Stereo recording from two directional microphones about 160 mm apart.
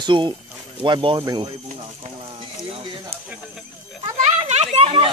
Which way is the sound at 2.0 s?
35° right (ahead or behind).